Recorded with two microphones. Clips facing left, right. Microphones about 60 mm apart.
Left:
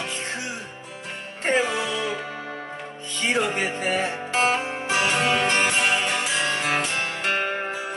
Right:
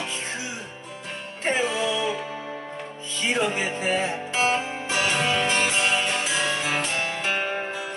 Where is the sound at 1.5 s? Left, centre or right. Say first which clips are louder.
Left 2 dB; left.